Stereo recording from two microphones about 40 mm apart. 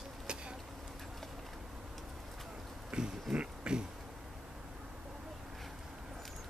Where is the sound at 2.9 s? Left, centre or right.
Centre.